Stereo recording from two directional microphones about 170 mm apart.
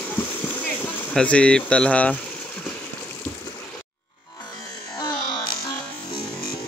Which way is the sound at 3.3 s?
10° left (ahead or behind).